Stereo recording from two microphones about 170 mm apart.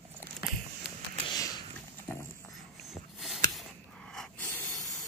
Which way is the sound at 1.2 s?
25° left (ahead or behind).